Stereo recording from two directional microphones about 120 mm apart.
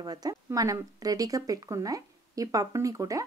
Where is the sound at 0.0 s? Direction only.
35° right (ahead or behind).